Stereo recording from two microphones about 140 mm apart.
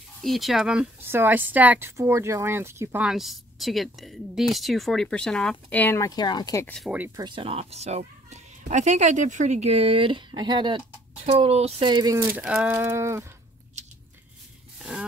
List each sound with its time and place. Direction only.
0.2 s a woman's voice: centre (ahead or behind)
1.0 s speech: 15° right (ahead or behind)
3.0 s a woman's voice: 5° right (ahead or behind); by 6.0 s 15° left (ahead or behind)
6.0 s speech: 30° left (ahead or behind)
6.6 s a woman's voice: 5° left (ahead or behind)
7.2 s a child's voice: 35° right (ahead or behind)
11.9 s speech: 30° right (ahead or behind)
12.3 s speech: 10° right (ahead or behind)
14.8 s a sound: 5° right (ahead or behind)